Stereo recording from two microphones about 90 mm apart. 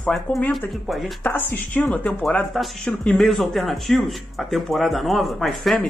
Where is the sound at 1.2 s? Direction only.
20° left (ahead or behind).